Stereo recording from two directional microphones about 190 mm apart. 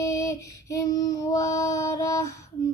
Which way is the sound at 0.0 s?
15° left (ahead or behind).